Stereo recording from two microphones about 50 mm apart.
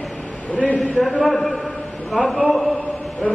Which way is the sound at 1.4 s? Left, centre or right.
Left.